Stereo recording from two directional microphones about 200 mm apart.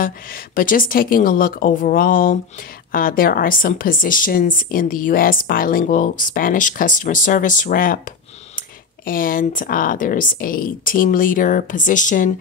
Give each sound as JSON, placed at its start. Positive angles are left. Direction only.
{"t": 0.0, "sound": "a woman's voice", "side_deg": 45}